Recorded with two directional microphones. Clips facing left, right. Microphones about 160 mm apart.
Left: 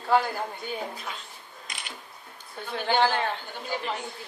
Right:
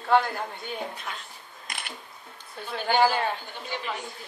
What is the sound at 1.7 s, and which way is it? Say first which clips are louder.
Camera: right 3 dB; 55° right (ahead or behind).